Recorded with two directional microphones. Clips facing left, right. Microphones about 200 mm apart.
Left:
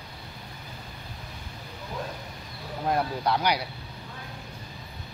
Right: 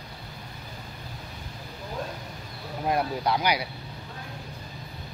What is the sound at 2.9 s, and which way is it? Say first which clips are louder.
Speech: even; 10° right (ahead or behind).